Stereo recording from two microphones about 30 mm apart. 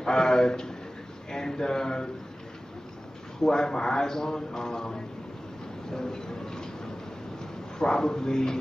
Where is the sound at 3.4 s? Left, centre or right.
Left.